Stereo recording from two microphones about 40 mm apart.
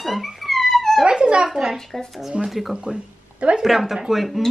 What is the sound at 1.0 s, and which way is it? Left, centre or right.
Speech, right.